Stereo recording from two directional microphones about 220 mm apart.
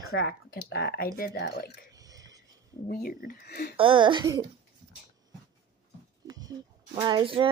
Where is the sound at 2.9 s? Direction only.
40° left (ahead or behind).